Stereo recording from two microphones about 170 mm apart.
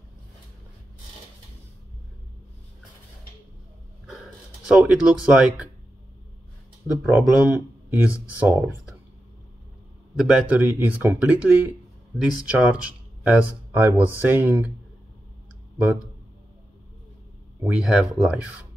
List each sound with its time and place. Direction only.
4.6 s speech: 5° right (ahead or behind)
7.0 s speech: 5° right (ahead or behind)
10.1 s speech: 5° right (ahead or behind)
17.6 s speech: 5° right (ahead or behind)